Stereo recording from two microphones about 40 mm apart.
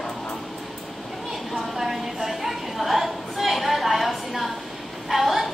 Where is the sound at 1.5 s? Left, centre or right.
Centre.